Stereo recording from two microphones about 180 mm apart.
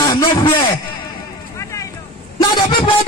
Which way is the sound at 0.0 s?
25° left (ahead or behind).